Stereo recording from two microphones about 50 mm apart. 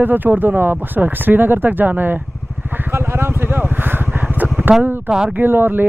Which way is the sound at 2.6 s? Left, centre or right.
Right.